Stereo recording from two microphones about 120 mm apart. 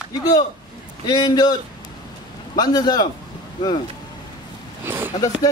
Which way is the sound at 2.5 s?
35° left (ahead or behind).